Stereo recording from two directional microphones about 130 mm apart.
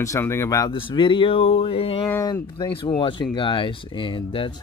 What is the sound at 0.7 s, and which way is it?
Speech, 40° left (ahead or behind).